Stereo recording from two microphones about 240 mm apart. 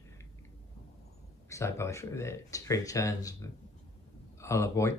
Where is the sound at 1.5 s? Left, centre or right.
Centre.